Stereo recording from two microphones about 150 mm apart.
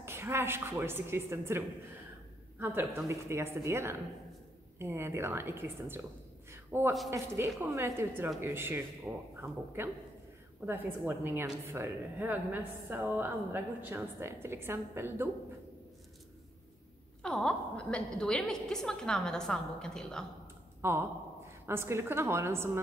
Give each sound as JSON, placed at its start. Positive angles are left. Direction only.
{"t": 0.0, "sound": "a woman's voice", "side_deg": -15}
{"t": 2.6, "sound": "a woman's voice", "side_deg": -15}
{"t": 6.5, "sound": "a sound", "side_deg": -15}
{"t": 7.1, "sound": "a woman's voice", "side_deg": -15}
{"t": 17.2, "sound": "a woman's voice", "side_deg": 5}
{"t": 20.8, "sound": "a woman's voice", "side_deg": -15}